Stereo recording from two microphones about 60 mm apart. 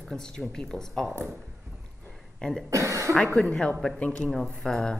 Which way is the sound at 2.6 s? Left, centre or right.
Right.